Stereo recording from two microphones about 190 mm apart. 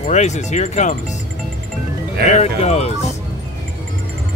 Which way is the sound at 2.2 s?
35° left (ahead or behind).